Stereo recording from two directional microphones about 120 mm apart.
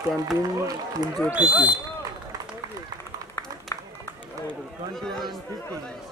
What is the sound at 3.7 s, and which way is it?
Run, 25° left (ahead or behind).